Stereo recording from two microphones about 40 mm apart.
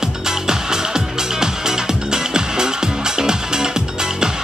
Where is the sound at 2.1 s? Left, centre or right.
Centre.